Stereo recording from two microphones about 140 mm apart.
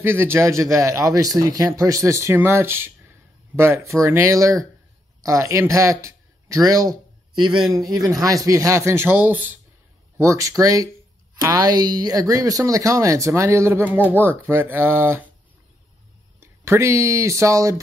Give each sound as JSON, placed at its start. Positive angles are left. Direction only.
{"t": 0.0, "sound": "speech", "side_deg": -15}
{"t": 16.3, "sound": "speech", "side_deg": -20}